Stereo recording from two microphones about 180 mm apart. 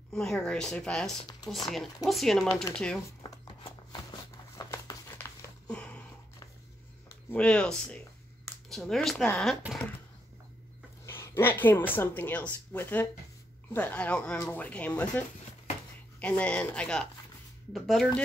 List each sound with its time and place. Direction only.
0.1 s speech: 5° left (ahead or behind)
2.4 s speech: 15° left (ahead or behind)
2.7 s speech: 5° left (ahead or behind)
3.2 s a sound: 25° left (ahead or behind); by 6.0 s 5° left (ahead or behind)
7.1 s speech: 10° left (ahead or behind)
11.1 s speech: 15° left (ahead or behind)